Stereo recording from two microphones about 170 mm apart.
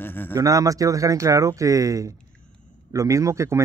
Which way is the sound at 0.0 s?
10° left (ahead or behind).